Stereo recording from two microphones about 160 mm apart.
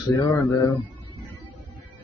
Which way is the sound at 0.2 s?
25° left (ahead or behind).